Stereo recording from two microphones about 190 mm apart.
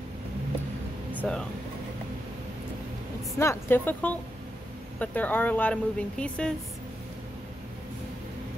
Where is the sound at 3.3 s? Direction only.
10° left (ahead or behind).